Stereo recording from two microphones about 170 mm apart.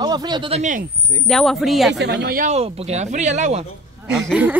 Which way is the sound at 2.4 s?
40° right (ahead or behind).